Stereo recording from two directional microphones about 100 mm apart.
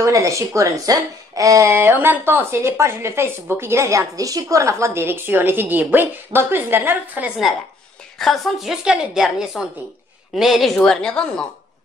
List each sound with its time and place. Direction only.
0.0 s speech: 30° right (ahead or behind)
8.2 s a woman's voice: centre (ahead or behind)